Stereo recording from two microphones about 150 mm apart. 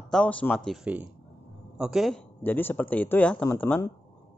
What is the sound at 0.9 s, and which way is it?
A man's voice, 10° right (ahead or behind).